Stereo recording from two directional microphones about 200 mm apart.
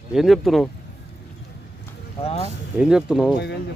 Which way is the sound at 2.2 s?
30° left (ahead or behind).